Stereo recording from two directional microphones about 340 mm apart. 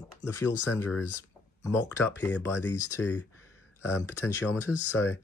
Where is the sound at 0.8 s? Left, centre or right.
Centre.